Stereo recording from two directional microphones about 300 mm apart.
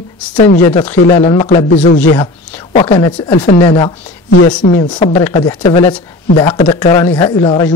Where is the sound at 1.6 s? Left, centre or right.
Left.